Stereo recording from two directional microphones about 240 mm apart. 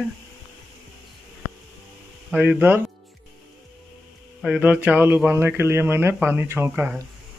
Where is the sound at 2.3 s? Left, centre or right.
Centre.